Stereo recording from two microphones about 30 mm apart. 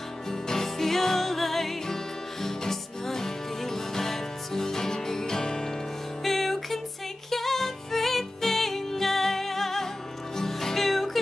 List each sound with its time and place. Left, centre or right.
0.3 s music: centre
6.2 s music: centre